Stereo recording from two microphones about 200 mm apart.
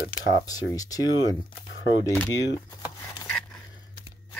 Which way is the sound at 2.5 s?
20° left (ahead or behind).